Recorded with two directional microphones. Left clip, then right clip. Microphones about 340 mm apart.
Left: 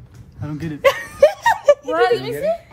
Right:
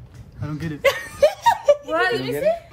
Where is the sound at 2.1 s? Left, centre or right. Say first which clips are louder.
Left 2 dB; centre.